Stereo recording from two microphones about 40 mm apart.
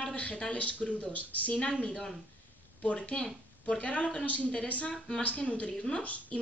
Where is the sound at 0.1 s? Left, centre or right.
Left.